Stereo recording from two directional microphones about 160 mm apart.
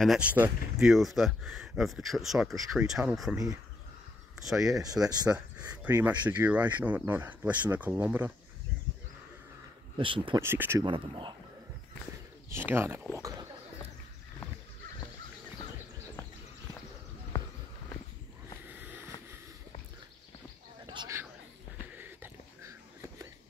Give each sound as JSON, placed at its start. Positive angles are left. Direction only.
{"t": 0.0, "sound": "speech", "side_deg": -5}
{"t": 4.5, "sound": "speech", "side_deg": 0}
{"t": 9.9, "sound": "speech", "side_deg": -30}
{"t": 10.4, "sound": "speech", "side_deg": -15}
{"t": 10.9, "sound": "speech", "side_deg": -30}
{"t": 12.5, "sound": "speech", "side_deg": -15}
{"t": 17.3, "sound": "a sound", "side_deg": 15}
{"t": 18.8, "sound": "vehicle", "side_deg": -10}
{"t": 20.8, "sound": "a sound", "side_deg": -30}
{"t": 21.9, "sound": "wheeze", "side_deg": -10}